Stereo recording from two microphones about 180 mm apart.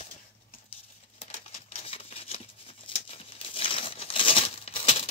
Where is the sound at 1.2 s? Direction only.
35° left (ahead or behind).